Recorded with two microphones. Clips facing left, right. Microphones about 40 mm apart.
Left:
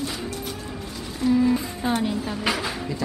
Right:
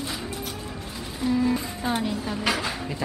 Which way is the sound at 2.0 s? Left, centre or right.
Centre.